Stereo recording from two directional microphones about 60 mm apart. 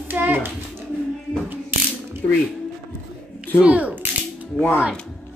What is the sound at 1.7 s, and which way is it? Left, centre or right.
Ratchet, right.